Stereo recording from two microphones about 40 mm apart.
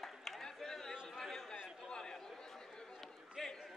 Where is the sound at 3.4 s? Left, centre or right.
Centre.